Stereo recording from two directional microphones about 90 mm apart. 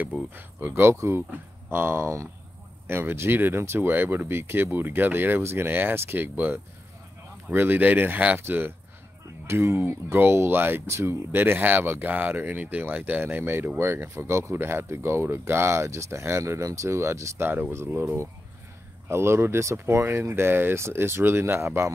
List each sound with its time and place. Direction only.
0.3 s speech: 20° right (ahead or behind)